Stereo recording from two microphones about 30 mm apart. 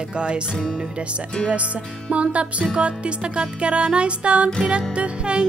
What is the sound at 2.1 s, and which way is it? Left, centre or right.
Music, right.